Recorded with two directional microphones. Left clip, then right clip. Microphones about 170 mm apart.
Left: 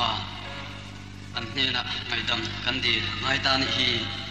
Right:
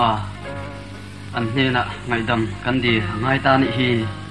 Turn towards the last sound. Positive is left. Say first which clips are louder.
# right 5 dB
turn(degrees=45)  # may be behind; listen again after turning